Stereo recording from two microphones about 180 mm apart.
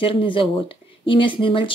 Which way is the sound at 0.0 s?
30° left (ahead or behind).